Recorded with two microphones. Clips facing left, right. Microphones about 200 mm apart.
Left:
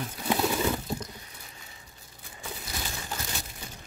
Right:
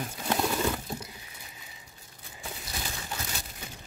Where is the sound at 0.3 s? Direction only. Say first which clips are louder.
Left 2 dB; 5° left (ahead or behind).